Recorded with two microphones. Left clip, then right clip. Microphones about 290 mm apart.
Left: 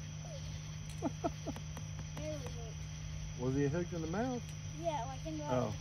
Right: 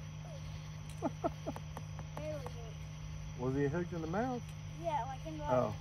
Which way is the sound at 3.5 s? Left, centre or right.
Centre.